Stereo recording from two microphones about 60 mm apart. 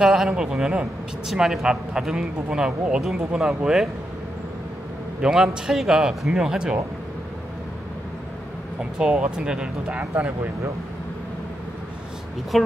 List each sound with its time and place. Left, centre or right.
0.0 s speech: centre
5.2 s speech: centre
8.9 s speech: centre
10.1 s speech: right
12.5 s speech: centre